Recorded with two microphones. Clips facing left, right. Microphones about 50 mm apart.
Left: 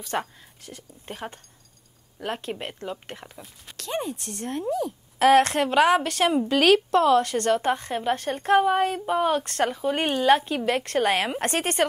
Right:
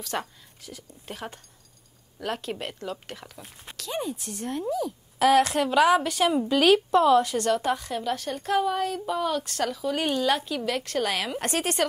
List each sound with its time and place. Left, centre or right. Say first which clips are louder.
0.0 s a woman's voice: left 3 dB; centre
0.6 s speech: even; left
1.0 s a woman's voice: left 2 dB; centre
3.7 s a sound: left 2 dB; left
4.5 s speech: left 1 dB; left
6.6 s speech: even; left